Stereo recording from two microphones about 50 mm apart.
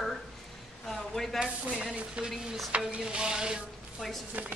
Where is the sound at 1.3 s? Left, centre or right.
Centre.